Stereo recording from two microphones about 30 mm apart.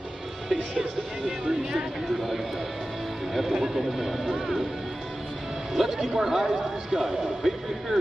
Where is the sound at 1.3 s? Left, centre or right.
Right.